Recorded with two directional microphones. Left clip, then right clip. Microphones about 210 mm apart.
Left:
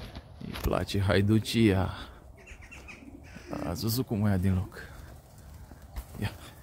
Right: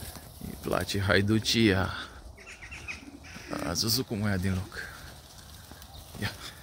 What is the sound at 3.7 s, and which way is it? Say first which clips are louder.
Speech: right 4 dB; 15° left (ahead or behind).